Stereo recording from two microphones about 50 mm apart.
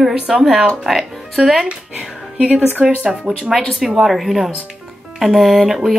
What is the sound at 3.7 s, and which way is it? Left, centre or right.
Speech, centre.